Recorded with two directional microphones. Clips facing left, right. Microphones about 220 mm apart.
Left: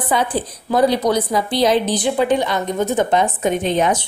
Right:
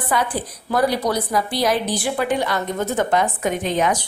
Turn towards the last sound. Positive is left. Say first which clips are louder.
# left 3 dB
turn(degrees=25)  # may be behind; listen again after turning